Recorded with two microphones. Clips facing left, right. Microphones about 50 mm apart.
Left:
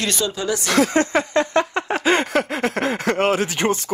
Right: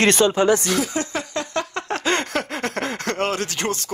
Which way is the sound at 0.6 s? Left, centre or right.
Left.